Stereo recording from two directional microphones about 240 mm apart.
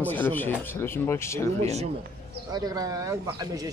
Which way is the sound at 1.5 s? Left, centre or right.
Right.